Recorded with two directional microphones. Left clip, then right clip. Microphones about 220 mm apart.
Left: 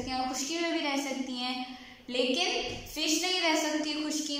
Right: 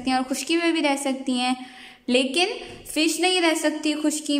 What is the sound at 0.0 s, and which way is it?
A woman's voice, 50° right (ahead or behind).